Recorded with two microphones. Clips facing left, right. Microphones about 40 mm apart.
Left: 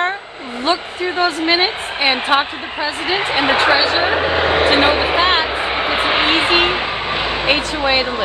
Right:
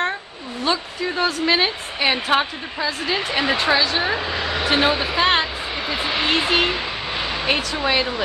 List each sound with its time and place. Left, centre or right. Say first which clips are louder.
0.7 s a woman's voice: left 4 dB; left
5.6 s vehicle: left 7 dB; left